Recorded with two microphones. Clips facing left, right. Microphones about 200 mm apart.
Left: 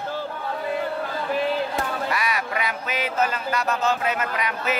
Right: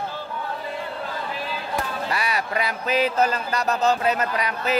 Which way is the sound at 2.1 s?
30° right (ahead or behind).